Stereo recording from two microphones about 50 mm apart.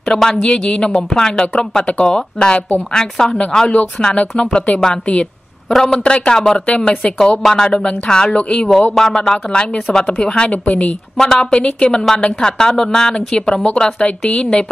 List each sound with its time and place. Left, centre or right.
0.1 s speech: centre
3.3 s speech: left
11.1 s speech: centre